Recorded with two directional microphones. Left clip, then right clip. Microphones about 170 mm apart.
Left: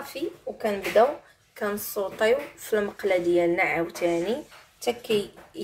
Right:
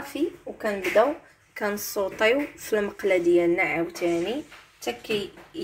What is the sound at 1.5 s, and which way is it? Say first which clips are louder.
Speech: right 1 dB; 25° right (ahead or behind).